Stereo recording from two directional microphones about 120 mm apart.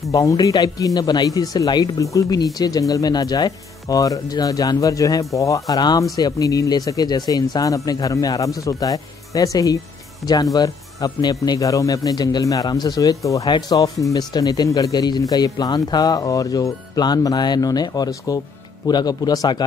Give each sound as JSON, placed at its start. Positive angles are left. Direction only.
{"t": 0.1, "sound": "speech", "side_deg": 30}